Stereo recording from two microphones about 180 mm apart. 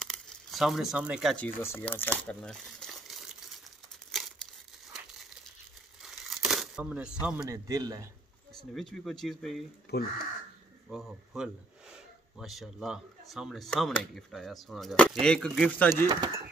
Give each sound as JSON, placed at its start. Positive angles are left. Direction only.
{"t": 0.0, "sound": "crumpling", "side_deg": 0}
{"t": 1.3, "sound": "speech", "side_deg": 10}
{"t": 6.0, "sound": "crumpling", "side_deg": 0}
{"t": 7.4, "sound": "speech", "side_deg": -20}
{"t": 8.5, "sound": "speech", "side_deg": 5}
{"t": 9.9, "sound": "speech", "side_deg": 65}
{"t": 10.9, "sound": "speech", "side_deg": 0}
{"t": 16.1, "sound": "speech", "side_deg": -20}